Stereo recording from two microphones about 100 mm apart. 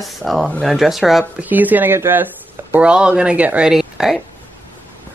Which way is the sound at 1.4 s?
15° right (ahead or behind).